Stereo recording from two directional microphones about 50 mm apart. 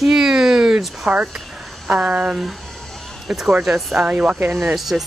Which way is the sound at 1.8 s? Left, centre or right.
Centre.